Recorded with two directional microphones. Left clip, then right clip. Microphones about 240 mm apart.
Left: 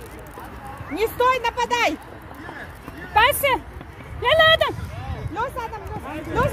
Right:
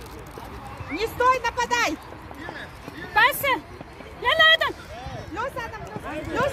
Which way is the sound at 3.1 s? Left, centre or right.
Left.